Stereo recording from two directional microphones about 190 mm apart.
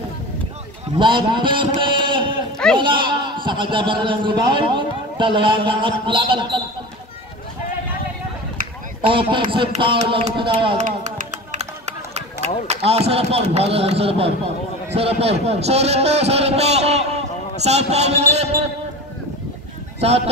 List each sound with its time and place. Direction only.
0.9 s a man's voice: 25° right (ahead or behind)
9.0 s a man's voice: 25° right (ahead or behind)
10.8 s run: 40° right (ahead or behind)
12.6 s a man's voice: 35° right (ahead or behind)
20.0 s a man's voice: 35° right (ahead or behind)